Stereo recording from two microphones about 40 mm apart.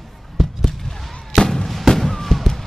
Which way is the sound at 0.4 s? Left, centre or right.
Centre.